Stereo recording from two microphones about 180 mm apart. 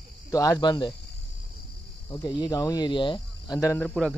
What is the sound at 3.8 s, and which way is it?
Speech, 5° left (ahead or behind).